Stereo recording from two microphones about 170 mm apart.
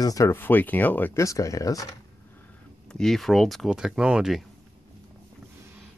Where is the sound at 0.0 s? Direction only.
20° left (ahead or behind).